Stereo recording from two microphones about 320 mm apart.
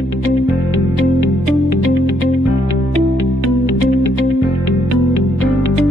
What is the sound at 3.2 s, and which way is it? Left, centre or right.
Music, left.